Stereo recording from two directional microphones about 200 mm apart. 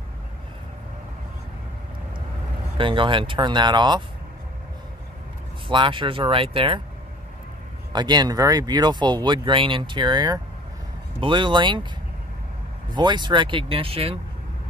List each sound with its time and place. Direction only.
2.8 s speech: 25° right (ahead or behind)
5.7 s speech: 25° right (ahead or behind)
7.9 s speech: 20° right (ahead or behind)
12.9 s speech: 20° right (ahead or behind)